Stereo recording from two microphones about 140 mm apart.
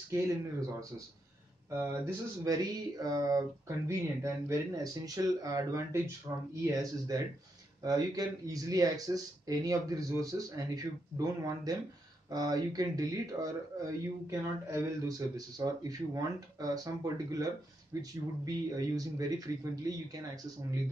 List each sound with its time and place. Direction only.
0.1 s speech: 25° right (ahead or behind)